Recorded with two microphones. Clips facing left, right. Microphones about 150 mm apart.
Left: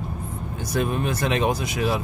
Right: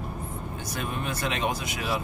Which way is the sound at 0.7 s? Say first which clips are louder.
Left 9 dB; 45° left (ahead or behind).